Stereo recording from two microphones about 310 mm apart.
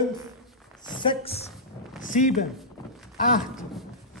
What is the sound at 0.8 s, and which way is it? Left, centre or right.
A woman's voice, centre.